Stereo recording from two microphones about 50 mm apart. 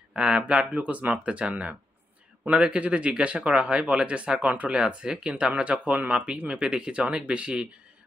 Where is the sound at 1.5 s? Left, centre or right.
Right.